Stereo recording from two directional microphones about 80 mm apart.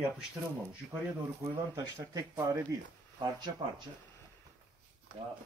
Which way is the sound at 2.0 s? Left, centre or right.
Right.